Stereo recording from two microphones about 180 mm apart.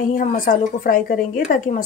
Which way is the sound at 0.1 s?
45° left (ahead or behind).